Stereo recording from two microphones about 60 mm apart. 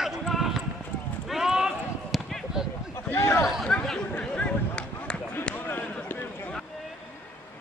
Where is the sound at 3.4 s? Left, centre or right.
Centre.